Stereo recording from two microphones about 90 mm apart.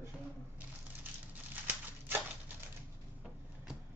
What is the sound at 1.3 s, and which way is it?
Crumpling, 20° right (ahead or behind).